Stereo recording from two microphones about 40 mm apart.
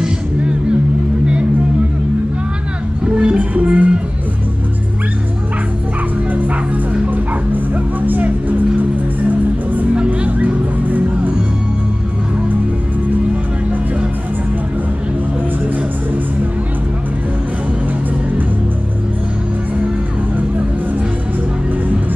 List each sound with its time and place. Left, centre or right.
0.0 s music: right
3.2 s music: right
6.3 s bow-wow: right
9.9 s music: right